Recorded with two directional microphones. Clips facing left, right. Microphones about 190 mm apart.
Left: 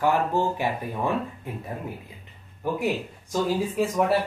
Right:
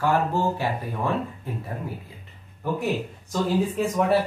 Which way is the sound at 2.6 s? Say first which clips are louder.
Even; 15° left (ahead or behind).